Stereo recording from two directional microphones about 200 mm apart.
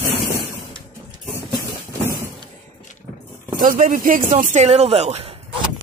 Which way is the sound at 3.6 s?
45° right (ahead or behind).